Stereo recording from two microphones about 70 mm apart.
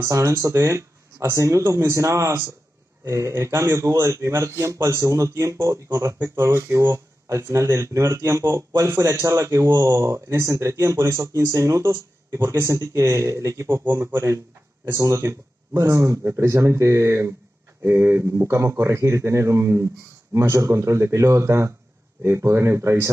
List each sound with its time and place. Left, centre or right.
0.0 s speech: right